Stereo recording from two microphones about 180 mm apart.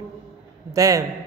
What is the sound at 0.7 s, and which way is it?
Speech, 20° right (ahead or behind).